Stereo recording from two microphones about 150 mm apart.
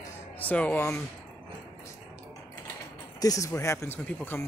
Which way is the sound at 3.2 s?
20° left (ahead or behind).